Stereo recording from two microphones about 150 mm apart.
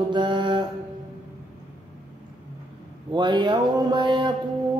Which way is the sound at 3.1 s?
30° right (ahead or behind).